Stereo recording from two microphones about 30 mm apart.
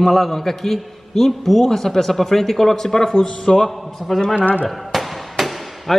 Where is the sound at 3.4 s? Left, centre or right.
Centre.